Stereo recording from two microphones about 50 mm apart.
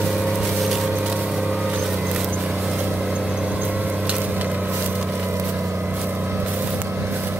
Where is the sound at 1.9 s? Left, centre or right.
Centre.